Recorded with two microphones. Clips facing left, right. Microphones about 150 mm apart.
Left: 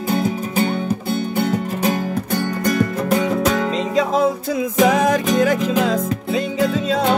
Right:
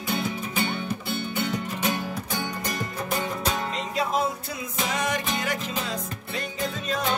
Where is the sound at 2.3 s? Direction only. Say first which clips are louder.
Left 11 dB; 70° left (ahead or behind).